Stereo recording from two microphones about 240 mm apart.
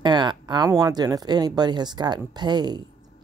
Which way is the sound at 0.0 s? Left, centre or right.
Centre.